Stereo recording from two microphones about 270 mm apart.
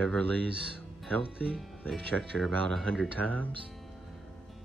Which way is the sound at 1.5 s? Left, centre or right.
Centre.